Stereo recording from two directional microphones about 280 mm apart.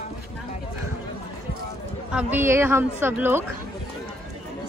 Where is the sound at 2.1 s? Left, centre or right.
Centre.